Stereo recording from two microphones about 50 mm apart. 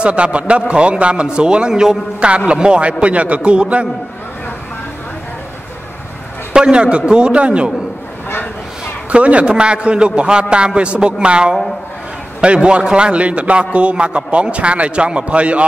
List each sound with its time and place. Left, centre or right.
0.0 s a man's voice: right
2.1 s a man's voice: right
6.5 s a man's voice: centre
9.1 s a man's voice: right